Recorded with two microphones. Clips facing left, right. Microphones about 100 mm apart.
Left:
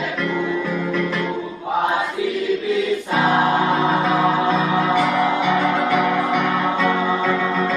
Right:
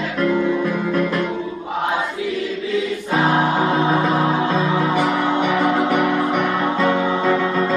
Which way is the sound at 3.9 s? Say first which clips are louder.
Even; centre (ahead or behind).